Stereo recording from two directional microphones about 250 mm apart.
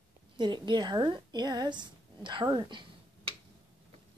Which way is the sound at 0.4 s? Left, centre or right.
Centre.